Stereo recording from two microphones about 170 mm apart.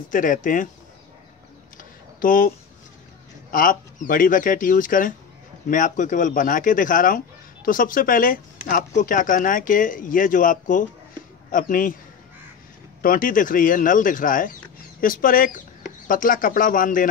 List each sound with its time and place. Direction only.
0.1 s speech: 50° left (ahead or behind)
1.8 s a sound: 55° left (ahead or behind)
3.5 s speech: 55° left (ahead or behind)
13.0 s speech: 55° left (ahead or behind)